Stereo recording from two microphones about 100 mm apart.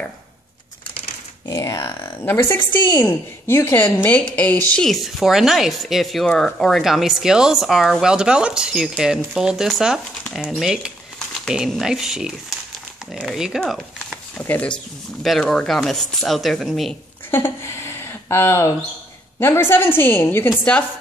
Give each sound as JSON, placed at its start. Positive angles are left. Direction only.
{"t": 1.5, "sound": "speech", "side_deg": 35}
{"t": 2.7, "sound": "a woman's voice", "side_deg": 50}
{"t": 3.0, "sound": "a woman's voice", "side_deg": 25}
{"t": 4.7, "sound": "speech", "side_deg": 0}
{"t": 14.4, "sound": "a woman's voice", "side_deg": 20}
{"t": 15.2, "sound": "speech", "side_deg": 5}
{"t": 17.3, "sound": "a woman's voice", "side_deg": 25}